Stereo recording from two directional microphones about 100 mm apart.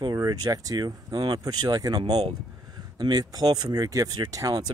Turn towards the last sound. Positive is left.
turn(degrees=-40)  # may be behind; listen again after turning